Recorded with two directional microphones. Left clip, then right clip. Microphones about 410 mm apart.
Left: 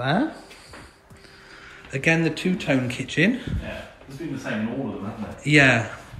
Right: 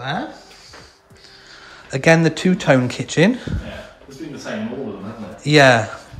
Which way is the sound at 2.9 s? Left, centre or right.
Centre.